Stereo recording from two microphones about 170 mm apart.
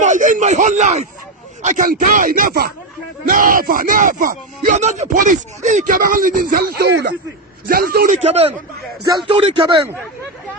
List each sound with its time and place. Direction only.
0.0 s a sound: 45° right (ahead or behind)
1.6 s speech: 50° right (ahead or behind); by 7.2 s 80° right
7.6 s a man's voice: 60° right (ahead or behind)
8.2 s a man's voice: 40° right (ahead or behind)
9.0 s speech: 25° right (ahead or behind)